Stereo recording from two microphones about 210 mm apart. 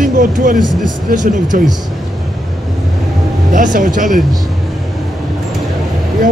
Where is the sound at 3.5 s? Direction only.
40° right (ahead or behind).